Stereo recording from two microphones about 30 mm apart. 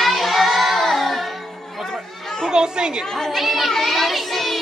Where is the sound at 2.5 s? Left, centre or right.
Right.